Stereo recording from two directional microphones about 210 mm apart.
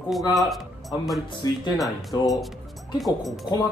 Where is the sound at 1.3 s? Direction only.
20° left (ahead or behind).